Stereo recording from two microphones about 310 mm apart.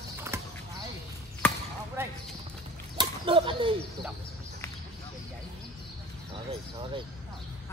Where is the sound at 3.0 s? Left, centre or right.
Centre.